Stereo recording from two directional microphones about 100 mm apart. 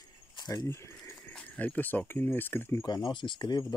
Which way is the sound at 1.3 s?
15° left (ahead or behind).